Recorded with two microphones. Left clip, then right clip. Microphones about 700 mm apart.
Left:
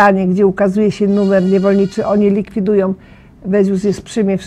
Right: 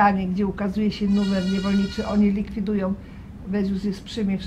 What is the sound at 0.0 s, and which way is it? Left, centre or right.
Speech, left.